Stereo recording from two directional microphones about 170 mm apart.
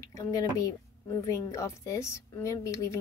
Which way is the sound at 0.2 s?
20° left (ahead or behind).